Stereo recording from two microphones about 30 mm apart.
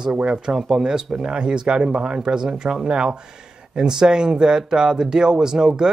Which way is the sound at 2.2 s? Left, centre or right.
Right.